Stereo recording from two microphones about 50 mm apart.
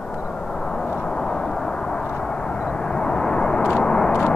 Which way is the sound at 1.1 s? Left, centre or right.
Centre.